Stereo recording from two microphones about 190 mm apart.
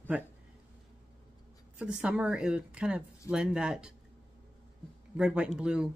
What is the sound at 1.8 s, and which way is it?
Speech, 5° right (ahead or behind).